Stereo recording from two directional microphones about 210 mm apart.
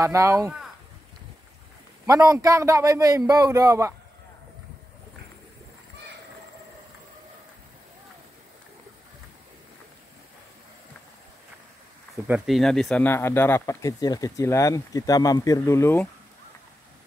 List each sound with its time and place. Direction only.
0.0 s a man's voice: 15° right (ahead or behind)
2.0 s a man's voice: 15° right (ahead or behind)
12.3 s speech: centre (ahead or behind)